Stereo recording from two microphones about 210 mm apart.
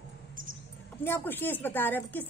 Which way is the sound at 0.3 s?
40° right (ahead or behind).